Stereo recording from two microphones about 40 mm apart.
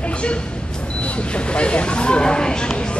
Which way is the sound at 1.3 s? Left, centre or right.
Left.